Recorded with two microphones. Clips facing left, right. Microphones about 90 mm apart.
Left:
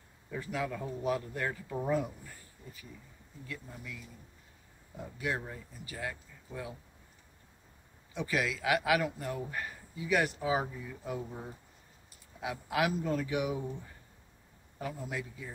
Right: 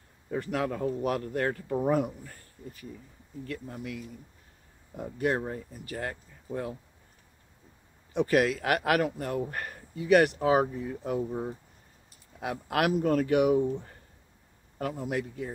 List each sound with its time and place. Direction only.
0.4 s a man's voice: 60° right (ahead or behind)
4.9 s speech: 50° right (ahead or behind)
8.1 s a man's voice: 55° right (ahead or behind)